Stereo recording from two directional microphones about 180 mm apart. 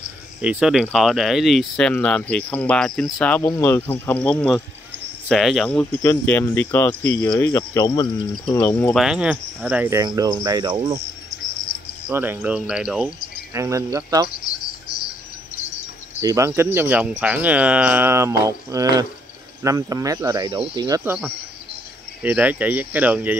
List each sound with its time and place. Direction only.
0.4 s speech: 5° right (ahead or behind); by 8.9 s 15° left (ahead or behind)
8.9 s speech: 5° right (ahead or behind); by 11.0 s 20° right (ahead or behind)
12.1 s speech: 10° right (ahead or behind)
13.5 s speech: 15° right (ahead or behind)
14.9 s cricket: 20° left (ahead or behind)
16.2 s speech: 15° right (ahead or behind)